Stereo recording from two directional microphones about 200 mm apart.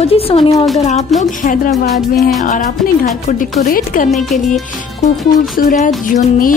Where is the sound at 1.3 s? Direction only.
40° left (ahead or behind).